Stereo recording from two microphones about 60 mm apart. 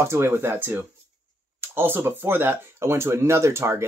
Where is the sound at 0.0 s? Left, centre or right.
Right.